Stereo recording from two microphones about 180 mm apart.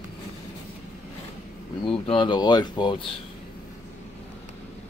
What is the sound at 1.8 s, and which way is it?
Speech, 30° left (ahead or behind).